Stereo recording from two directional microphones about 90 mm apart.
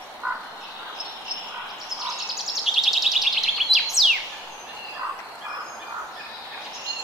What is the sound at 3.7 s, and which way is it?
Bird, 55° right (ahead or behind).